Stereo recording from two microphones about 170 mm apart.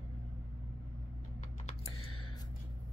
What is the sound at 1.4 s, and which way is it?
Computer keyboard, 40° left (ahead or behind).